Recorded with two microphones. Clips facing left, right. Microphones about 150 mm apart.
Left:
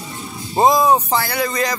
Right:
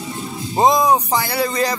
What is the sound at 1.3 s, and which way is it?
Music, 30° right (ahead or behind).